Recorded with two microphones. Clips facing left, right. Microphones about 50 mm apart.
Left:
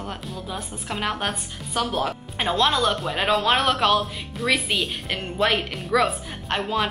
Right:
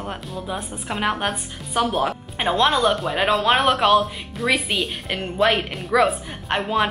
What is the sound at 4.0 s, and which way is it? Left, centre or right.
A woman's voice, centre.